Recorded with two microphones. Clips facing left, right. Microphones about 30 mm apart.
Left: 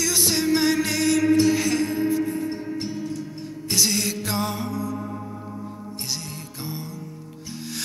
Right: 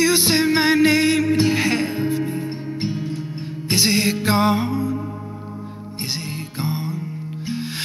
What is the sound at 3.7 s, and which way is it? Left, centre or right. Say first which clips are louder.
Music: right 5 dB; right.